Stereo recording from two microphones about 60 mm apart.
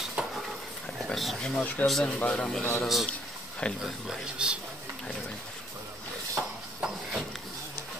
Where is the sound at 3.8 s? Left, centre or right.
Centre.